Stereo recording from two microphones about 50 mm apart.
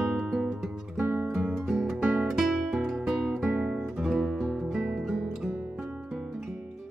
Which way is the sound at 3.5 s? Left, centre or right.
Right.